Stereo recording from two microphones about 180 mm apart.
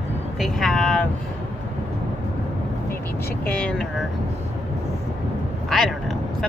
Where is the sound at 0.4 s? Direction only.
Centre (ahead or behind).